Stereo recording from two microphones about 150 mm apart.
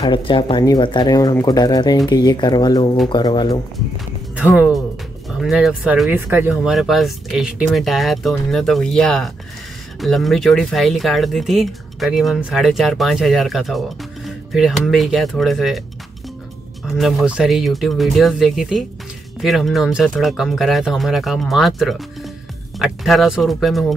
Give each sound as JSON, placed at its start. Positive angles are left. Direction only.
{"t": 0.0, "sound": "speech", "side_deg": 35}
{"t": 5.4, "sound": "speech", "side_deg": -5}
{"t": 16.8, "sound": "speech", "side_deg": 0}